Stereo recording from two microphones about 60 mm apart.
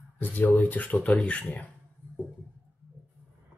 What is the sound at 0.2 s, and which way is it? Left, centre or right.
Speech, left.